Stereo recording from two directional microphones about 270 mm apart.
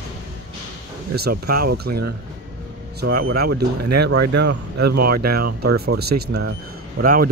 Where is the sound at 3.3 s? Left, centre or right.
Right.